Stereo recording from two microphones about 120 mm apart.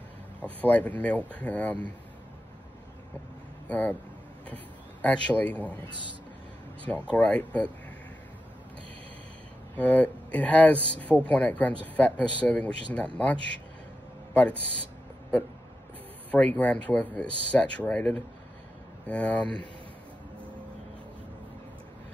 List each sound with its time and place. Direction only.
0.6 s speech: 10° left (ahead or behind)
3.6 s speech: 15° left (ahead or behind)
5.0 s speech: 10° left (ahead or behind)
7.1 s speech: 10° left (ahead or behind)
9.8 s speech: 10° left (ahead or behind)
16.3 s speech: 10° left (ahead or behind)